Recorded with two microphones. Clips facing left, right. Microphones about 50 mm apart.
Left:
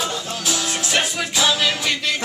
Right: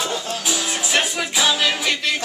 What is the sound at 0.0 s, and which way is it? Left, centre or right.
Music, centre.